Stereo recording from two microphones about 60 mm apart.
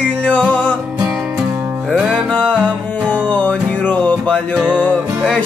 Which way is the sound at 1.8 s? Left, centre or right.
Centre.